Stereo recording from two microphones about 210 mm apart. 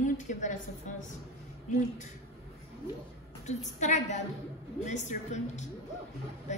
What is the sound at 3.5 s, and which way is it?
A woman's voice, 35° left (ahead or behind).